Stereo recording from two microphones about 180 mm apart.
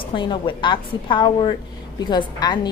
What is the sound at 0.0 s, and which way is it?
A woman's voice, 25° left (ahead or behind).